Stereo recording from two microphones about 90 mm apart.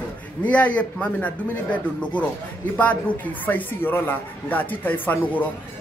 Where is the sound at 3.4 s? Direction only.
20° left (ahead or behind).